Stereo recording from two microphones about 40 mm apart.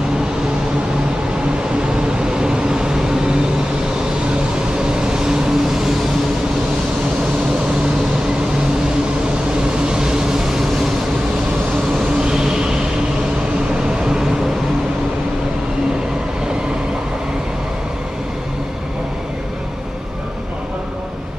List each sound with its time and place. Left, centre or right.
2.3 s vehicle: centre
5.0 s vehicle: centre
9.8 s vehicle: centre
12.2 s music: centre
14.0 s vehicle: centre